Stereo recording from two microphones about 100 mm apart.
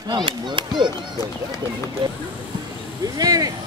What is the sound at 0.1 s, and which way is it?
Speech, 50° right (ahead or behind).